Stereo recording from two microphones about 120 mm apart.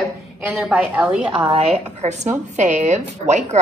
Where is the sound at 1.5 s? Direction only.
75° right (ahead or behind).